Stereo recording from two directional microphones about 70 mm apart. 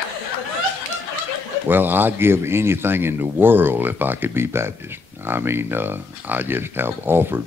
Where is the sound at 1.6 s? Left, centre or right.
Right.